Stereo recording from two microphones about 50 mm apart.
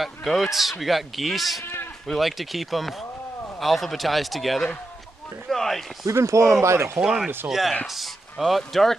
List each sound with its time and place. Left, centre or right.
0.0 s speech: centre
1.6 s run: left
2.1 s speech: centre
6.0 s speech: right
6.6 s speech: right
7.0 s speech: centre